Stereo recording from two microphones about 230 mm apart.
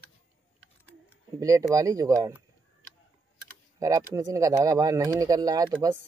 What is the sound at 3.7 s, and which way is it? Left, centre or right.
Speech, centre.